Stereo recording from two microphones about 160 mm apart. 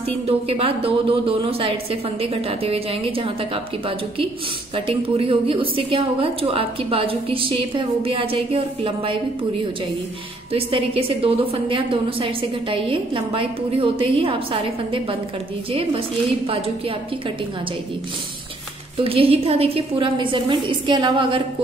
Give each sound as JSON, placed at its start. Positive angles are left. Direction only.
{"t": 0.5, "sound": "a woman's voice", "side_deg": -35}
{"t": 10.5, "sound": "a woman's voice", "side_deg": -35}
{"t": 16.4, "sound": "a woman's voice", "side_deg": -35}
{"t": 18.9, "sound": "a woman's voice", "side_deg": -35}